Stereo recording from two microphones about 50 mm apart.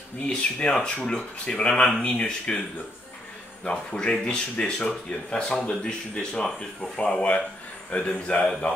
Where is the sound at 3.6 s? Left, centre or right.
Centre.